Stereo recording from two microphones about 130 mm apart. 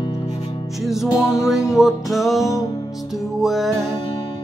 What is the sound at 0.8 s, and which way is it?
Music, centre (ahead or behind).